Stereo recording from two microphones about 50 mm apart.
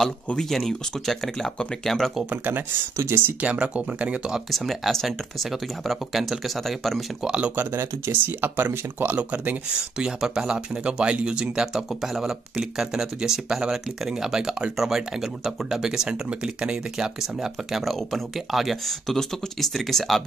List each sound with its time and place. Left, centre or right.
0.4 s speech: centre
2.2 s speech: right
3.3 s speech: right
4.5 s speech: centre
7.2 s speech: right
8.1 s speech: right
9.8 s speech: centre